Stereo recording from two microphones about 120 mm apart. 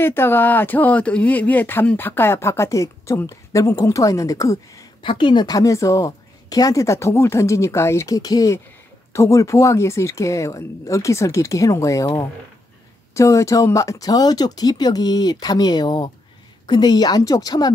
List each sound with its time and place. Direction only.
0.0 s speech: 20° left (ahead or behind)
5.0 s speech: 45° left (ahead or behind); by 12.1 s 25° left (ahead or behind)
13.1 s speech: 25° left (ahead or behind)